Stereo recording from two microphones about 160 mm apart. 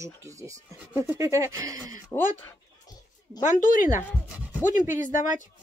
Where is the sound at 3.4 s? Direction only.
60° left (ahead or behind).